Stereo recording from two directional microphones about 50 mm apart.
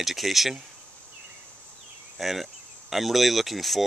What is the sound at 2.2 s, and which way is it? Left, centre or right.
Speech, centre.